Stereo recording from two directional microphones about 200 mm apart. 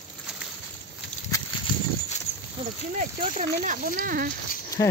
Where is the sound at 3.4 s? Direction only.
40° right (ahead or behind).